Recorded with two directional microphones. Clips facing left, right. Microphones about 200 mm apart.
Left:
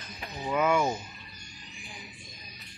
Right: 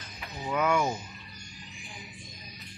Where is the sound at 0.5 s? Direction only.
5° left (ahead or behind).